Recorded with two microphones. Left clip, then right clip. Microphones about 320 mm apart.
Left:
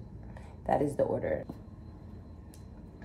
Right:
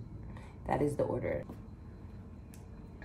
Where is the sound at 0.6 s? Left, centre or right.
Centre.